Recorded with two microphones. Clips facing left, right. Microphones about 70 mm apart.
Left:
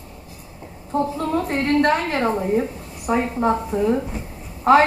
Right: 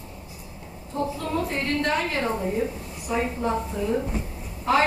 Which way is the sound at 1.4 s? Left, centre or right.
Left.